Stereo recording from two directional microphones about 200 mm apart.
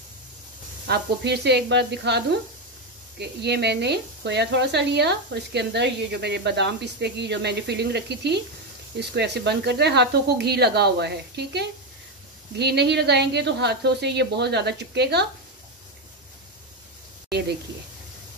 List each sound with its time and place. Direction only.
0.8 s speech: 55° right (ahead or behind)